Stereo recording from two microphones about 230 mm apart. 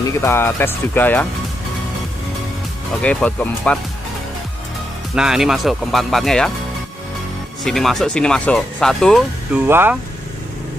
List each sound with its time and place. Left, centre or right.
0.2 s speech: centre
3.0 s speech: centre
5.1 s speech: centre
7.6 s speech: centre
9.7 s speech: centre